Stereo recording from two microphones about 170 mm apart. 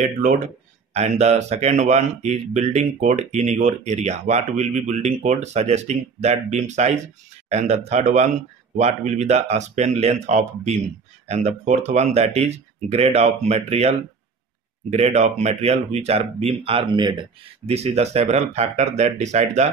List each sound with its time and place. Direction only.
0.0 s speech: 50° right (ahead or behind)